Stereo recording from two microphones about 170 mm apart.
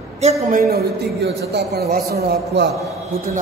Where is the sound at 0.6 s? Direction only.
65° right (ahead or behind).